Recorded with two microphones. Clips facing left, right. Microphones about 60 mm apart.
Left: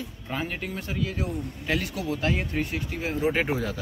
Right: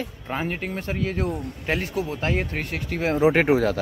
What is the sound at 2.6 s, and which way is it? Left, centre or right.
Speech, right.